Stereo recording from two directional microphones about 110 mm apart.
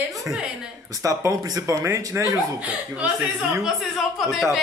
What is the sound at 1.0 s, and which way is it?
Speech, 30° right (ahead or behind).